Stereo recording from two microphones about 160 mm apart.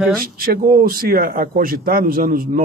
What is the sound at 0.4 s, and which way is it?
A man's voice, 65° right (ahead or behind).